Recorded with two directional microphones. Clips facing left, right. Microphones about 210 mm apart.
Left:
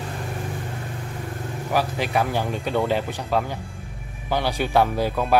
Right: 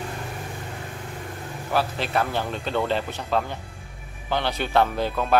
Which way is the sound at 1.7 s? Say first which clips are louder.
Left 1 dB; 10° left (ahead or behind).